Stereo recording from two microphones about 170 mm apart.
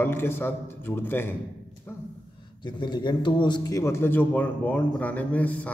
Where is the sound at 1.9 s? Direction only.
15° left (ahead or behind).